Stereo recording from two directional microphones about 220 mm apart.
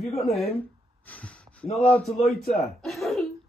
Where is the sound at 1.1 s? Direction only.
5° left (ahead or behind).